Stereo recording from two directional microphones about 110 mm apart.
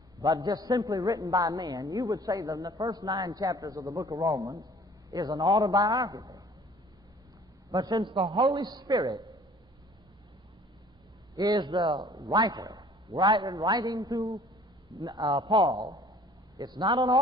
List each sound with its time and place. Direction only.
0.2 s a man's voice: 35° right (ahead or behind)
7.7 s a man's voice: 35° right (ahead or behind)
11.3 s a man's voice: 35° right (ahead or behind)